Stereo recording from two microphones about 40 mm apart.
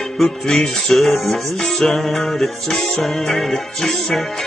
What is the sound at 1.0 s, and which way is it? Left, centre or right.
Music, centre.